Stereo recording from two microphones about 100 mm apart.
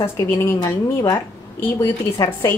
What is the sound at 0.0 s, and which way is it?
Speech, 25° left (ahead or behind).